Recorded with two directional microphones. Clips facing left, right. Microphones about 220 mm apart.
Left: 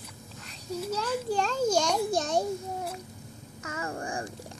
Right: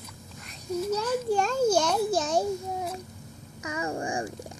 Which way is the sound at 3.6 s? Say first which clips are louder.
Right 4 dB; 15° right (ahead or behind).